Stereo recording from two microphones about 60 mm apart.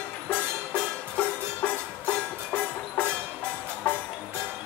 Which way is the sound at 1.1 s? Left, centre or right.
Left.